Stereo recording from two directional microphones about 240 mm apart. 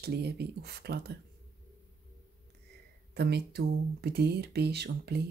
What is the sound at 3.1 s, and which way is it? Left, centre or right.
Speech, right.